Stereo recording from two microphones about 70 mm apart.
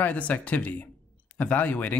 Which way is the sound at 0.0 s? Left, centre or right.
Left.